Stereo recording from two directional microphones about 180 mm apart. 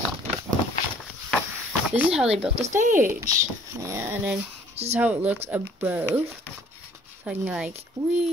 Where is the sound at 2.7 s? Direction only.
45° right (ahead or behind).